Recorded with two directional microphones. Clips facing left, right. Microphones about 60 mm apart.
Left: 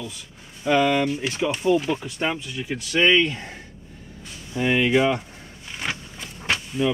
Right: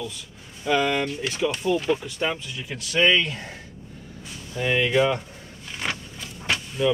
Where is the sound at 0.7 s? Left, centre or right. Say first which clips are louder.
Left 3 dB; centre.